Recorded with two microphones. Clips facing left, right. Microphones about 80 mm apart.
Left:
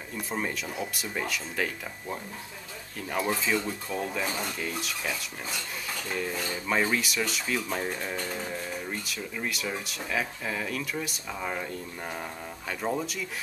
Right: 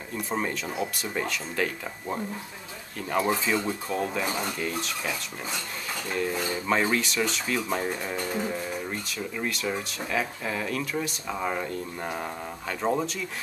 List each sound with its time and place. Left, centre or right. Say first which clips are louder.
0.3 s speech: right 3 dB; centre
3.1 s speech: right 3 dB; centre
4.3 s speech: right 3 dB; centre
4.6 s speech: right 3 dB; centre
6.3 s speech: right 4 dB; centre
6.7 s speech: right 2 dB; centre
8.9 s speech: right 2 dB; centre